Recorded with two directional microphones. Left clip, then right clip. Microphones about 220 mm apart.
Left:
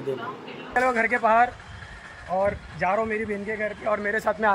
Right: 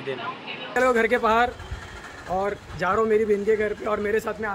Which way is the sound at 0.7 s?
5° right (ahead or behind).